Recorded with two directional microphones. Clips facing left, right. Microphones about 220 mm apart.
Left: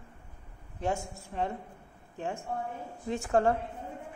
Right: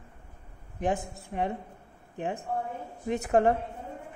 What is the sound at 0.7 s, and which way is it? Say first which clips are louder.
Speech: right 3 dB; 15° right (ahead or behind).